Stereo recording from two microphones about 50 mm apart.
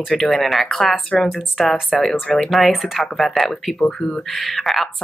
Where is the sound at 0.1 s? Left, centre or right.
Centre.